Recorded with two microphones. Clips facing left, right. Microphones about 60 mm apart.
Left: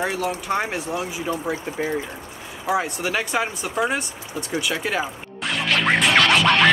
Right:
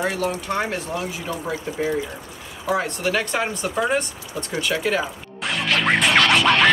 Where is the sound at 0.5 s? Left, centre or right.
Centre.